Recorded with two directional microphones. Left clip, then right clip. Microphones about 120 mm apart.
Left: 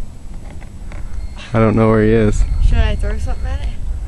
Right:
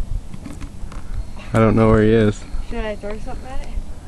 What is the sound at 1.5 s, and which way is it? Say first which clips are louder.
Speech: left 1 dB; 5° left (ahead or behind).